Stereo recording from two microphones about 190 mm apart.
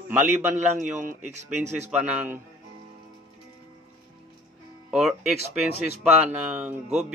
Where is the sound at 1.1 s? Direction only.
40° right (ahead or behind).